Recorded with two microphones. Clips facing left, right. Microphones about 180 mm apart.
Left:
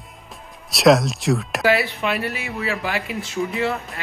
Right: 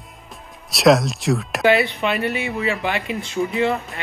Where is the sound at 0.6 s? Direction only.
Centre (ahead or behind).